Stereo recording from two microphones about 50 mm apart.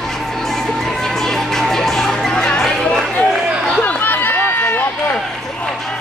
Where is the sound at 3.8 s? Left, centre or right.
Left.